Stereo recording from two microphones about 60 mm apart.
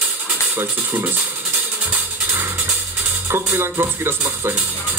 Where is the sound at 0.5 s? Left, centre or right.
Right.